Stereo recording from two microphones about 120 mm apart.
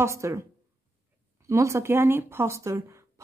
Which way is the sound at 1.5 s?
25° right (ahead or behind).